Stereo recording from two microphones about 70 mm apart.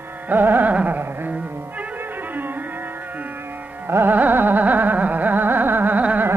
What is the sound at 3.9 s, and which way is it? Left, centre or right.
Carnatic music, right.